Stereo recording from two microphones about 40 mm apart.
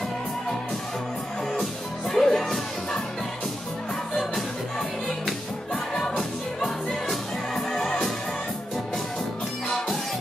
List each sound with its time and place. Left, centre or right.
1.5 s music: centre
4.1 s music: centre
5.9 s music: centre
7.1 s music: centre
9.7 s music: centre